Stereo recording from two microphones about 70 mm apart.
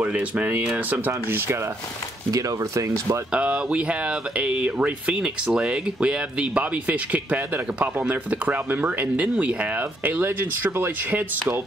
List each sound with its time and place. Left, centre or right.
0.0 s speech: right
2.3 s speech: right
3.3 s speech: centre